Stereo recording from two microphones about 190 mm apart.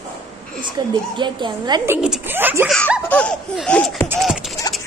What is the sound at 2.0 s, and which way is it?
Speech, 5° right (ahead or behind).